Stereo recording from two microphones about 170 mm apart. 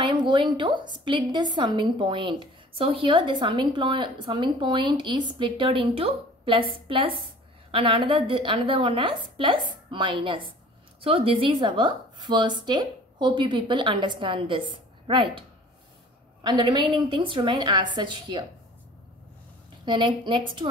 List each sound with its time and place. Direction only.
0.0 s a woman's voice: 30° right (ahead or behind)
16.4 s a woman's voice: 25° right (ahead or behind)
19.8 s a woman's voice: 25° right (ahead or behind)